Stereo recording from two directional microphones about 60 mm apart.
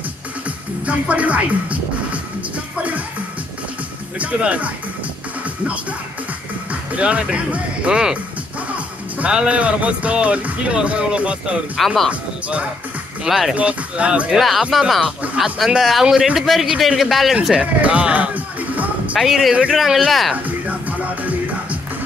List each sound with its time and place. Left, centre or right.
0.8 s speech: right
2.5 s music: right
4.2 s speech: right
6.7 s speech: right
11.8 s speech: centre
12.1 s speech: right
13.3 s speech: centre
13.6 s speech: right
14.3 s speech: centre
15.8 s a man's voice: centre
17.6 s music: centre
19.1 s speech: centre
20.4 s music: right